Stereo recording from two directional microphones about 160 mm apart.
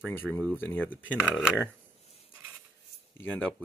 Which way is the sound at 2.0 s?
40° left (ahead or behind).